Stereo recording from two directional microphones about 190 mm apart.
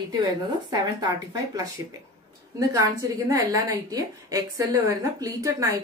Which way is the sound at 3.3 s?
20° right (ahead or behind).